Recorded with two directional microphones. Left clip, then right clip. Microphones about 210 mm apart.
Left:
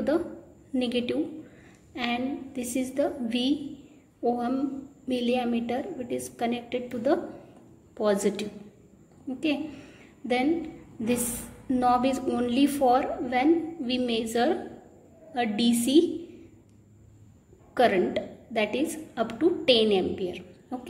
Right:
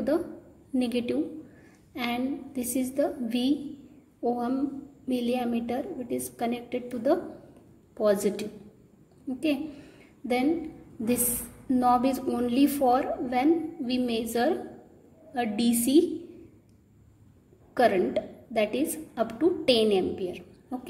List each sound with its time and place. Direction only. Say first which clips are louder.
0.7 s a woman's voice: left 1 dB; 20° right (ahead or behind)
9.4 s a sound: even; 20° right (ahead or behind)
11.1 s a woman's voice: even; 20° right (ahead or behind)
17.7 s a woman's voice: even; 20° right (ahead or behind)